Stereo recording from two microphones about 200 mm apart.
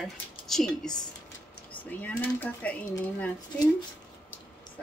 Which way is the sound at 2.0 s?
10° left (ahead or behind).